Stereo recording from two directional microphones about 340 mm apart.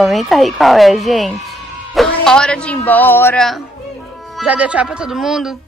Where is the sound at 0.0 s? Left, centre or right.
Centre.